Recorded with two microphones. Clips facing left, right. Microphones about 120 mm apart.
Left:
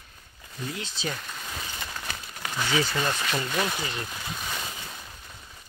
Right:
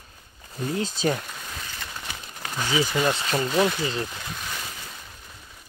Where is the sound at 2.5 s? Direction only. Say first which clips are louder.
Right 2 dB; 15° right (ahead or behind).